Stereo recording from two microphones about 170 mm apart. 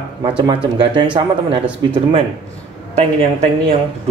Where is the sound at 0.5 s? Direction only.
30° right (ahead or behind).